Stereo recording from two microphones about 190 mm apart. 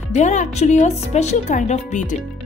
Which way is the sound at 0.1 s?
40° left (ahead or behind).